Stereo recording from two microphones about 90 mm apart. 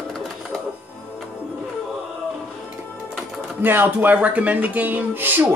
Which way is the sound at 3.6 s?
20° right (ahead or behind).